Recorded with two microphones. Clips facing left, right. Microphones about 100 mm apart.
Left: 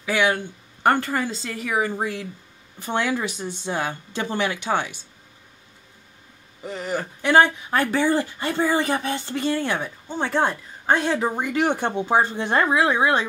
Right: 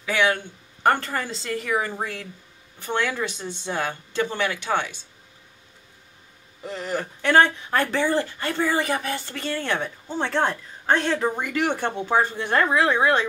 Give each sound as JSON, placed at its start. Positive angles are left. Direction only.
{"t": 0.0, "sound": "speech", "side_deg": 15}
{"t": 6.6, "sound": "speech", "side_deg": 5}
{"t": 12.6, "sound": "speech", "side_deg": 10}